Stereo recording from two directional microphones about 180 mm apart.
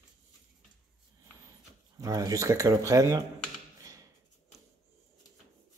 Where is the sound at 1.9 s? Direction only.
20° right (ahead or behind).